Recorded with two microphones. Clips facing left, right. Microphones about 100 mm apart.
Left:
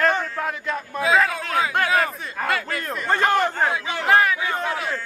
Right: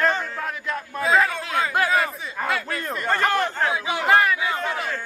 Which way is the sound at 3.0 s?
15° left (ahead or behind).